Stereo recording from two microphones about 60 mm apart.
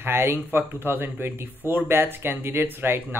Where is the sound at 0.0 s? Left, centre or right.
Right.